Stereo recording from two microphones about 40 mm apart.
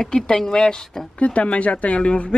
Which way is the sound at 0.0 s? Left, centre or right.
Centre.